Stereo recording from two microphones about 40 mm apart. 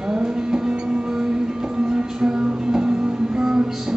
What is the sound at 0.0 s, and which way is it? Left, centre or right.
Music, centre.